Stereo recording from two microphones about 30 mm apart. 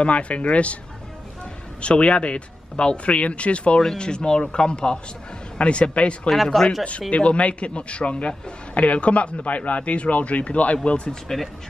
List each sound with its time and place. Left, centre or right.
0.0 s speech: left
1.8 s speech: left
3.1 s speech: left
3.9 s speech: left
5.6 s speech: left
6.3 s speech: centre
7.1 s speech: left
8.7 s speech: left
11.3 s speech: centre